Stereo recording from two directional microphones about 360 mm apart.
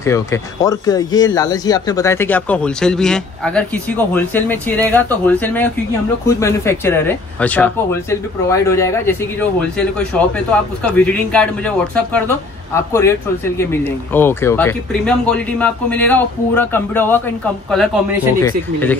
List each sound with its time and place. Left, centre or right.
0.0 s speech: centre
10.9 s speech: centre